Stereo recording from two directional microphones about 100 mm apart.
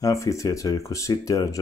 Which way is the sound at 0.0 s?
30° left (ahead or behind).